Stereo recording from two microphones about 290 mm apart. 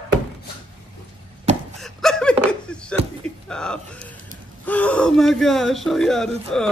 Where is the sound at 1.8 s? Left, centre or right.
Centre.